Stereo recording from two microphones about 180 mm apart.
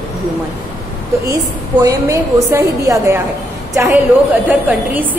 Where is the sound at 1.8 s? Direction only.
15° right (ahead or behind).